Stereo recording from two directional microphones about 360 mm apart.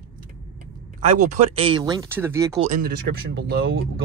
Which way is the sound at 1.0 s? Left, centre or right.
Centre.